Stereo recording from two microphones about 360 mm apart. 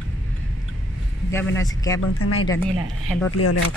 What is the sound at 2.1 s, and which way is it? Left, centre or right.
Speech, left.